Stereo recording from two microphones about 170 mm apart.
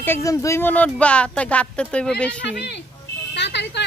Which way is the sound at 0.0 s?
15° left (ahead or behind).